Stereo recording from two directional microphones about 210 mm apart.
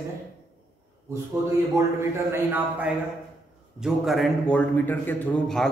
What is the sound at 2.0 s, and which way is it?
A man's voice, 10° right (ahead or behind).